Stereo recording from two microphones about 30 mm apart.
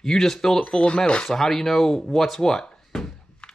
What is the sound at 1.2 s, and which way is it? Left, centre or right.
Speech, centre.